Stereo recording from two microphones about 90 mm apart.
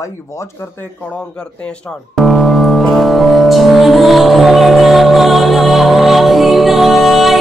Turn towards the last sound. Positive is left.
turn(degrees=0)  # may be behind; listen again after turning